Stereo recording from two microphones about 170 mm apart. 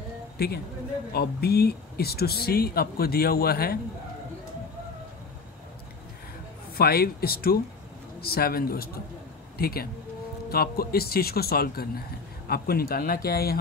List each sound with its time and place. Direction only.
0.4 s speech: 65° left (ahead or behind)
6.8 s speech: 65° left (ahead or behind)